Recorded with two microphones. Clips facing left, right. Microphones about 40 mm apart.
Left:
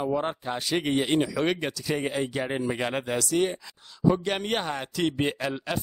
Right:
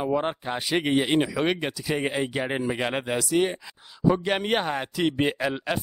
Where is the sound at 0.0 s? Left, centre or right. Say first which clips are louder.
Right 2 dB; right.